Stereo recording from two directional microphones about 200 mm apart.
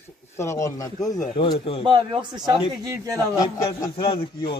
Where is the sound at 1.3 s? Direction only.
25° left (ahead or behind).